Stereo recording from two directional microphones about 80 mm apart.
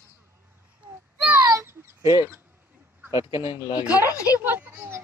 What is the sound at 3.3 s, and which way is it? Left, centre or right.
Speech, left.